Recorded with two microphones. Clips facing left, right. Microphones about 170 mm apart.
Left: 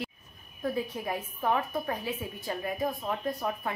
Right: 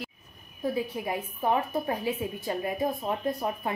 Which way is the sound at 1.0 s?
20° right (ahead or behind).